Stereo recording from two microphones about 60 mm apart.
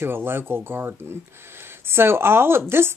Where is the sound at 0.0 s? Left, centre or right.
Right.